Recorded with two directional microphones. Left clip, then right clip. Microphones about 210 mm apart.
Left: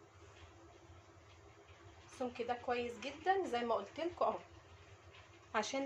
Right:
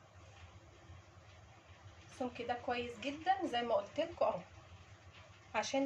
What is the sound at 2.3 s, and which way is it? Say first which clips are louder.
A woman's voice: even; 40° left (ahead or behind).